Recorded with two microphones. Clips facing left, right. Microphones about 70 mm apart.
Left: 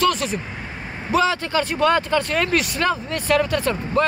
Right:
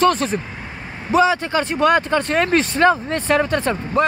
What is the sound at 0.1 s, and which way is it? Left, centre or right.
Speech, right.